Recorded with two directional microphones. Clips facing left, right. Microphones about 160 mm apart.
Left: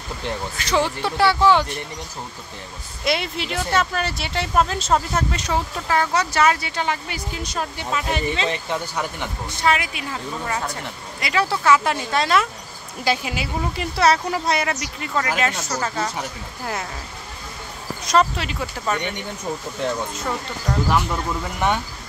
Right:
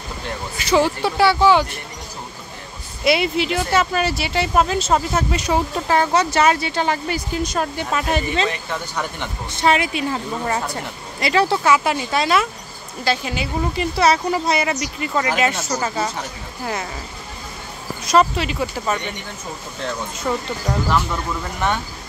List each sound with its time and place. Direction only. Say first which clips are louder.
0.6 s speech: right 5 dB; 5° right (ahead or behind)
3.0 s speech: right 6 dB; 5° right (ahead or behind)
5.9 s speech: right 3 dB; 25° right (ahead or behind)
7.5 s speech: even; 50° right (ahead or behind)
8.5 s speech: left 1 dB; 15° left (ahead or behind)
9.6 s speech: right 4 dB; 25° right (ahead or behind)
11.7 s speech: right 1 dB; 5° right (ahead or behind)
13.0 s speech: right 1 dB; 10° left (ahead or behind); by 16.1 s 10° right (ahead or behind)
18.0 s speech: right 3 dB; 5° right (ahead or behind)
20.3 s speech: right 6 dB; 5° right (ahead or behind)